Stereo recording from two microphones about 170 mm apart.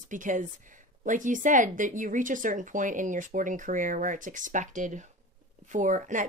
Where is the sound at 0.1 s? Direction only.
50° right (ahead or behind).